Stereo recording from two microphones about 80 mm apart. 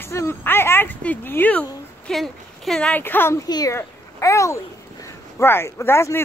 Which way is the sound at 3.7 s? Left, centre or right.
Left.